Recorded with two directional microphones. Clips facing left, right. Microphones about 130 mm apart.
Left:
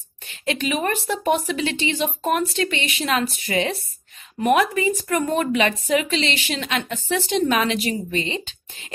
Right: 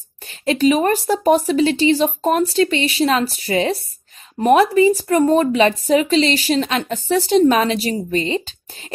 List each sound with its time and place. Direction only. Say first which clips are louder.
0.3 s a woman's voice: right 9 dB; 35° right (ahead or behind)